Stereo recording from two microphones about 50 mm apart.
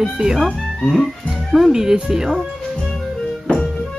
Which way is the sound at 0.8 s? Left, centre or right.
Centre.